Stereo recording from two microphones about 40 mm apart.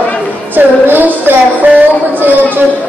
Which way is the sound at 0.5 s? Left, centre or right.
Right.